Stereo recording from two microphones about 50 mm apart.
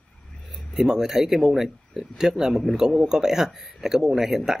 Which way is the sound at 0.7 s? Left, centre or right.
Centre.